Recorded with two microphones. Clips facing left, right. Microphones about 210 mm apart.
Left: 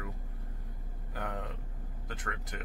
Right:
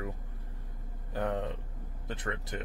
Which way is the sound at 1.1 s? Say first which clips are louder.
Right 7 dB; 30° right (ahead or behind).